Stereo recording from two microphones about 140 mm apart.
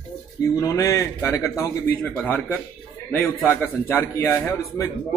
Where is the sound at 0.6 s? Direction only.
25° left (ahead or behind).